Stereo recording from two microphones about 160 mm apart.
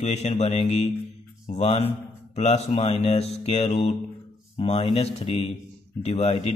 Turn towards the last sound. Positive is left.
turn(degrees=40)  # may be behind; listen again after turning